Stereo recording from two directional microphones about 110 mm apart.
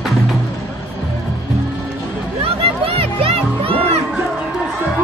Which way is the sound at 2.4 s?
60° right (ahead or behind).